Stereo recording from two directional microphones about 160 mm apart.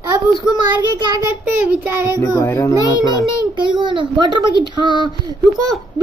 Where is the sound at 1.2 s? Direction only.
15° right (ahead or behind).